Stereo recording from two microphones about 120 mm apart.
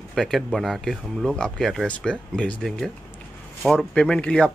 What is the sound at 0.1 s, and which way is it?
A man's voice, centre (ahead or behind).